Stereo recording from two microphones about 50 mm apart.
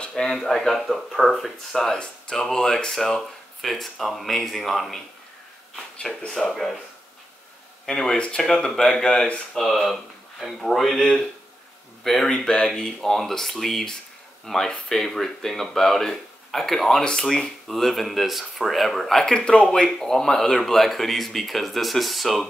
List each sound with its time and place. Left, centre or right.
0.1 s speech: centre
1.8 s speech: centre
6.0 s speech: centre
6.5 s speech: centre
7.8 s speech: centre
9.6 s speech: centre
12.3 s speech: centre
17.0 s speech: centre